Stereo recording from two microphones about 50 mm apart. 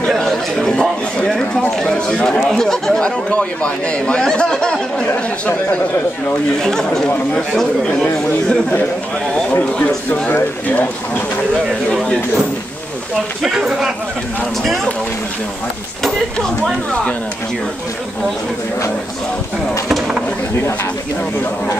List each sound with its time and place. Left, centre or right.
0.7 s a sound: centre
1.4 s speech: centre
3.0 s speech: left
6.6 s speech: centre
9.5 s speech: left
13.4 s speech: centre